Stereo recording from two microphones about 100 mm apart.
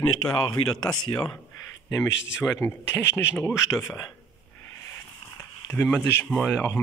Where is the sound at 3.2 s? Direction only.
20° left (ahead or behind).